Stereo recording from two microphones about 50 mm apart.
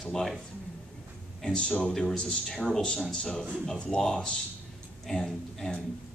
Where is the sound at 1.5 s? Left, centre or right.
Centre.